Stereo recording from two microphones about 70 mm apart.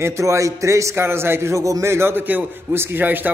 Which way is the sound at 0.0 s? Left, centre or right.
Right.